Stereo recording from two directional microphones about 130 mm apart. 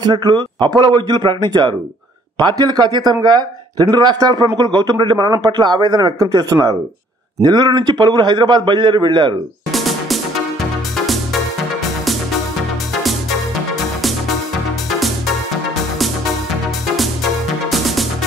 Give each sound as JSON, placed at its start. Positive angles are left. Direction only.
{"t": 0.0, "sound": "a man's voice", "side_deg": -30}
{"t": 9.7, "sound": "music", "side_deg": 0}
{"t": 16.9, "sound": "music", "side_deg": 0}